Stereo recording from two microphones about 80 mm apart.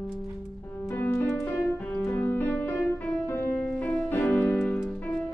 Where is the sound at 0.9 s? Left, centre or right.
Left.